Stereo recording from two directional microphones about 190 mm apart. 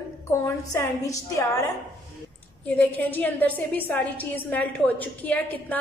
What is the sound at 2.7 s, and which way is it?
A woman's voice, 10° left (ahead or behind).